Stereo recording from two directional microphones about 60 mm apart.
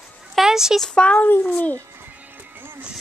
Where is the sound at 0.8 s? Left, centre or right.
Centre.